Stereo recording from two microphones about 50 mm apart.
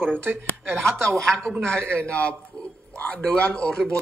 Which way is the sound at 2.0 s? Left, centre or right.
Left.